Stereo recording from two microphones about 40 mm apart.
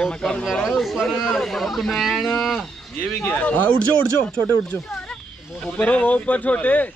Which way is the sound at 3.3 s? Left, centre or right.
Left.